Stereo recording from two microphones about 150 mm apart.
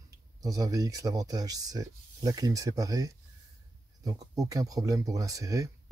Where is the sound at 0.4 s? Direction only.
25° right (ahead or behind).